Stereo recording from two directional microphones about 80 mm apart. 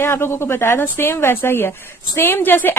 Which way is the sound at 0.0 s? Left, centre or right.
Left.